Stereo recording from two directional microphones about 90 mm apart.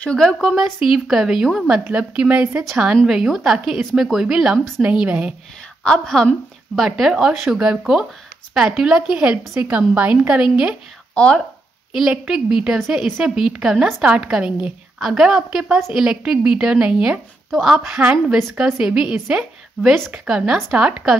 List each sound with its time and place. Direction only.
0.2 s a woman's voice: 5° left (ahead or behind)
1.9 s a woman's voice: 15° right (ahead or behind)
3.1 s a woman's voice: 5° right (ahead or behind)
4.6 s a woman's voice: 5° left (ahead or behind)
5.0 s a woman's voice: 15° right (ahead or behind)
5.9 s a woman's voice: 5° left (ahead or behind); by 10.8 s 10° right (ahead or behind)
11.1 s speech: 10° left (ahead or behind)
11.9 s a woman's voice: 5° right (ahead or behind)
17.5 s a woman's voice: centre (ahead or behind)